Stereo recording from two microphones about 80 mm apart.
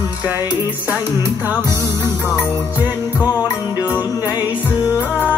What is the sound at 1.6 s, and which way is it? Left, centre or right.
Music, right.